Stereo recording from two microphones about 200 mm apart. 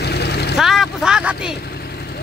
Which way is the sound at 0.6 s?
Centre (ahead or behind).